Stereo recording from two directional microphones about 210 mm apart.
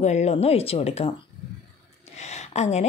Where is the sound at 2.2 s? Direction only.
30° left (ahead or behind).